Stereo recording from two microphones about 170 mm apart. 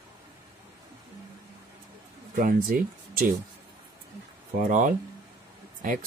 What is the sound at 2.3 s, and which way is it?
Speech, 55° right (ahead or behind).